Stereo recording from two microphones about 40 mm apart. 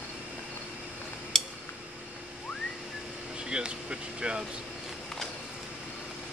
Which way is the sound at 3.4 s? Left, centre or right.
Right.